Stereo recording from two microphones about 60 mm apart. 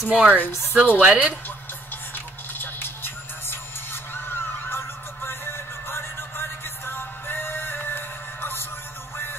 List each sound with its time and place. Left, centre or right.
0.1 s a woman's voice: right
2.1 s music: left